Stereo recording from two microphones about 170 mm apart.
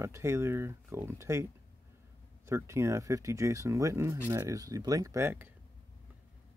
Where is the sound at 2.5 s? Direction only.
15° right (ahead or behind).